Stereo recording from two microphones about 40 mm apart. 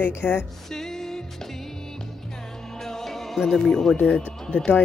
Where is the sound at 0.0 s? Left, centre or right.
Left.